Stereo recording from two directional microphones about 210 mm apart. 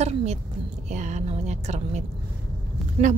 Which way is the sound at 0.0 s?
30° right (ahead or behind).